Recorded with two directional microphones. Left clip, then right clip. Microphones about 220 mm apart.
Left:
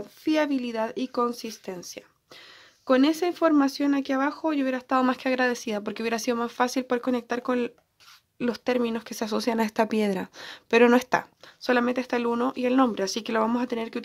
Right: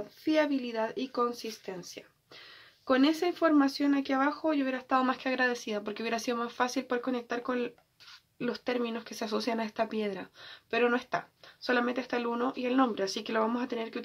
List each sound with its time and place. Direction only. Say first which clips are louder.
0.2 s speech: left 3 dB; 50° left (ahead or behind)